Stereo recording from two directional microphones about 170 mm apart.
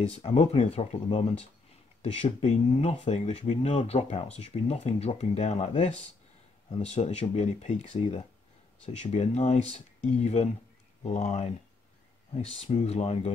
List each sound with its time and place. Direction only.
0.0 s speech: 40° left (ahead or behind)